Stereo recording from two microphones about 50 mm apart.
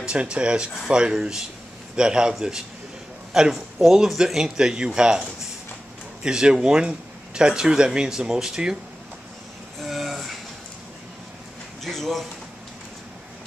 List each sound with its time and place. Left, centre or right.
0.0 s speech: centre
3.3 s speech: centre
9.8 s train: centre
11.8 s a man's voice: centre